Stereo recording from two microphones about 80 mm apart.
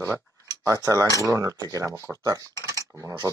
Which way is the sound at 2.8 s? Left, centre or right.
Right.